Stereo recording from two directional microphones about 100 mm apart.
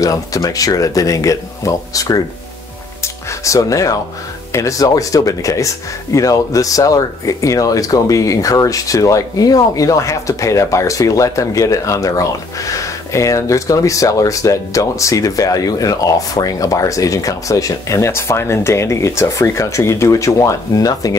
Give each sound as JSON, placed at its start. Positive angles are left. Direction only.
{"t": 0.0, "sound": "speech", "side_deg": 35}